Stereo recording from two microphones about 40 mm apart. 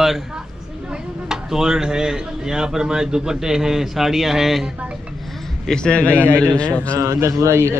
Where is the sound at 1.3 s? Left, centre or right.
Centre.